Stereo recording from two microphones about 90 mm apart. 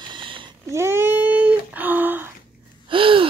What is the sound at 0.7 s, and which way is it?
Cat, 30° right (ahead or behind).